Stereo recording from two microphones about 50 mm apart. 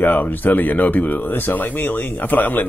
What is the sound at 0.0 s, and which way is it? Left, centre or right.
Speech, left.